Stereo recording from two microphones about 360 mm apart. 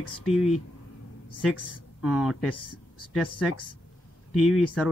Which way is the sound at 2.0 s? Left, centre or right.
Centre.